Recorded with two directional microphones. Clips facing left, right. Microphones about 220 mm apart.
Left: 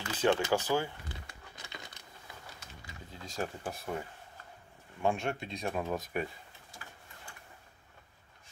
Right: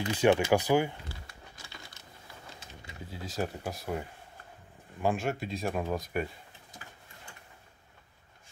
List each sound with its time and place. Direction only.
0.0 s speech: 15° right (ahead or behind)
3.1 s speech: 5° right (ahead or behind)
5.0 s speech: 5° right (ahead or behind)